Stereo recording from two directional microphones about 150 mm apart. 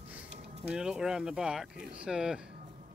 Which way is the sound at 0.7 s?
5° right (ahead or behind).